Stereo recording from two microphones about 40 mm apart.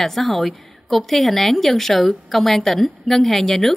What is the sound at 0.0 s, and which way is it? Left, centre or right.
A woman's voice, centre.